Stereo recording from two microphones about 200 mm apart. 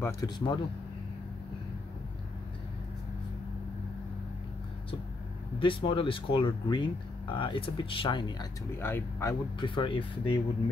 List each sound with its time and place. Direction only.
0.0 s speech: 20° left (ahead or behind)
5.6 s speech: 25° left (ahead or behind)